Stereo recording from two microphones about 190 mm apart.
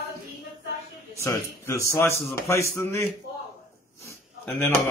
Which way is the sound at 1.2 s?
15° left (ahead or behind).